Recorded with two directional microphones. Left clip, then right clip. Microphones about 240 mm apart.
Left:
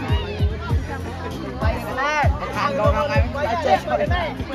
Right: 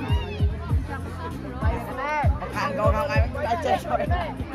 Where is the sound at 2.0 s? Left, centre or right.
Left.